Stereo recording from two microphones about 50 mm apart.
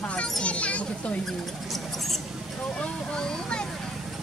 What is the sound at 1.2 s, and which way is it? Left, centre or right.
Speech, centre.